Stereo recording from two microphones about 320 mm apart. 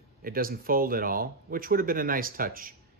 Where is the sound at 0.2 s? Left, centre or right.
Right.